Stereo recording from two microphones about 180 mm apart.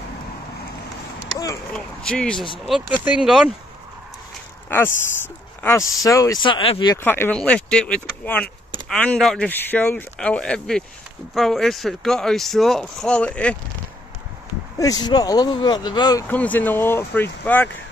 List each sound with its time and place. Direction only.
1.7 s speech: 5° left (ahead or behind)
4.6 s speech: 10° left (ahead or behind); by 7.0 s 30° left (ahead or behind)
7.0 s speech: 10° left (ahead or behind)
14.8 s speech: 20° left (ahead or behind)
16.3 s speech: 10° left (ahead or behind)